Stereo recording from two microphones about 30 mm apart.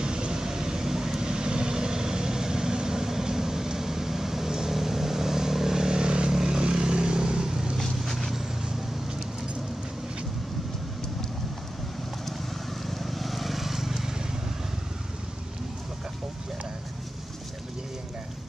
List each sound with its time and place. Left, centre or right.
0.0 s vehicle: right
7.8 s vehicle: centre
12.8 s vehicle: centre